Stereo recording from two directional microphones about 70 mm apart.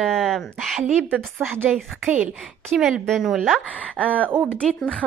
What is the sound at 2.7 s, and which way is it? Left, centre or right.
Speech, centre.